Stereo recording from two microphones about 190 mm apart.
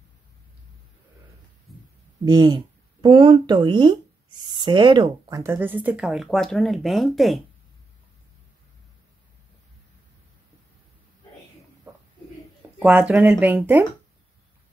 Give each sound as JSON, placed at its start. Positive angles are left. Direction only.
{"t": 2.2, "sound": "speech", "side_deg": -20}
{"t": 12.7, "sound": "speech", "side_deg": -5}